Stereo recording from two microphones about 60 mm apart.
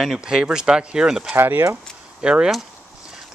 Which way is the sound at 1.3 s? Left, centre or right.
Right.